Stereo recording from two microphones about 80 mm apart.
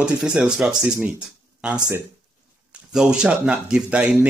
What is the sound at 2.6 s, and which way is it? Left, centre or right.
Speech, centre.